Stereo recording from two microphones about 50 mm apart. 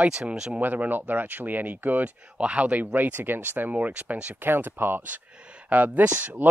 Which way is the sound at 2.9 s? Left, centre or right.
Right.